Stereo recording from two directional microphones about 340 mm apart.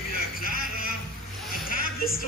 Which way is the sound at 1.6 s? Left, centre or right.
Left.